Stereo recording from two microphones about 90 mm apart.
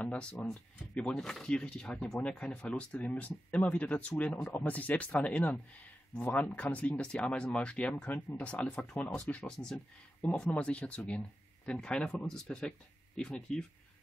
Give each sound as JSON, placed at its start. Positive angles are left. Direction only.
{"t": 0.0, "sound": "speech", "side_deg": 15}